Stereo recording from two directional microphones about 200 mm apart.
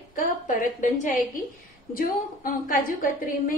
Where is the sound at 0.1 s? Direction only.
40° left (ahead or behind).